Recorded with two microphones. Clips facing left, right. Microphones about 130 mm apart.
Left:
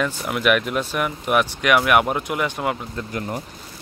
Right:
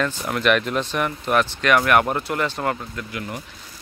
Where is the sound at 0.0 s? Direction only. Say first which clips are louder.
Even; 5° left (ahead or behind).